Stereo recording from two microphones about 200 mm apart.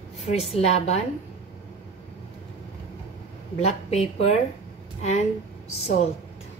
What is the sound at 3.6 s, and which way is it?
Speech, 30° left (ahead or behind).